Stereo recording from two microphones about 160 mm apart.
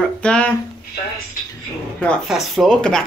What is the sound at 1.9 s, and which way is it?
Speech, 5° left (ahead or behind).